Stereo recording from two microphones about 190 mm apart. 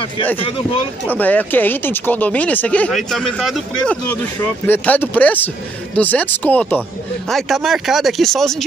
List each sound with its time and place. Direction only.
1.0 s speech: 10° left (ahead or behind)